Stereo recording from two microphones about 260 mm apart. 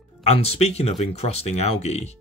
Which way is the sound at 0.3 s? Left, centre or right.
Left.